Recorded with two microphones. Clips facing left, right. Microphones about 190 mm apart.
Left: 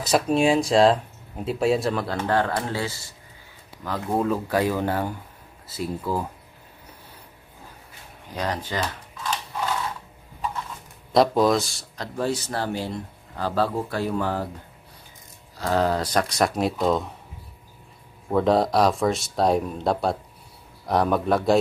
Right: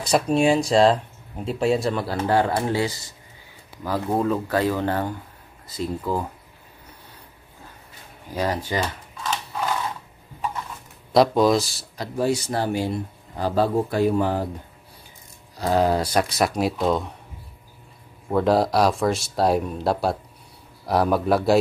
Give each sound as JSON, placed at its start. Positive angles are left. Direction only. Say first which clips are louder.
{"t": 0.0, "sound": "speech", "louder": "right 1 dB", "side_deg": 0}
{"t": 3.8, "sound": "speech", "louder": "right 2 dB", "side_deg": -5}
{"t": 4.5, "sound": "speech", "louder": "right 1 dB", "side_deg": 10}
{"t": 8.4, "sound": "speech", "louder": "right 3 dB", "side_deg": -10}
{"t": 11.1, "sound": "speech", "louder": "right 1 dB", "side_deg": 0}
{"t": 15.5, "sound": "speech", "louder": "right 2 dB", "side_deg": -15}
{"t": 18.3, "sound": "speech", "louder": "even", "side_deg": -5}